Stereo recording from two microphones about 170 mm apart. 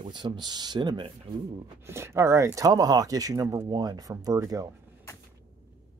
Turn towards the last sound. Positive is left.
turn(degrees=-20)  # may be behind; listen again after turning